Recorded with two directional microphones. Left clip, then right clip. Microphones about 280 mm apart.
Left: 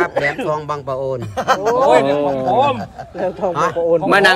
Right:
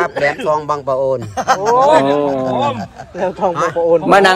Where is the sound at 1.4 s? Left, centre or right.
Centre.